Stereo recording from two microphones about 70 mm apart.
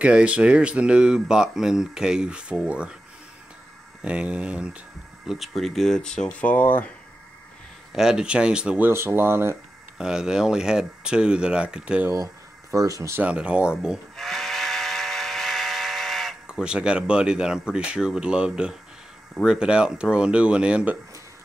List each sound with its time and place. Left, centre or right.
0.0 s speech: centre
4.0 s speech: centre
5.2 s speech: centre
6.3 s speech: left
7.9 s speech: centre
8.9 s speech: right
9.9 s speech: centre
12.7 s speech: right
13.2 s speech: centre
14.1 s steam whistle: centre
19.4 s speech: centre